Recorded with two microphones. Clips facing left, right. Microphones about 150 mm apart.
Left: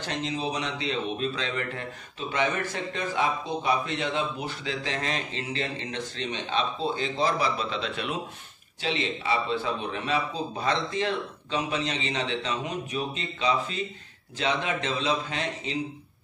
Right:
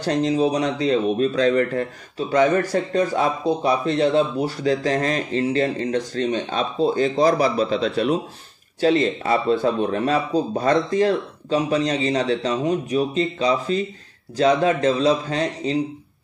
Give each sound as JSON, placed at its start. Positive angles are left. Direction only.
{"t": 0.0, "sound": "speech", "side_deg": -40}